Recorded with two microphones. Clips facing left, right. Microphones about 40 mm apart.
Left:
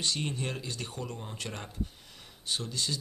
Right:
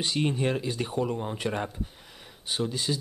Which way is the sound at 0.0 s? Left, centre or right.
Centre.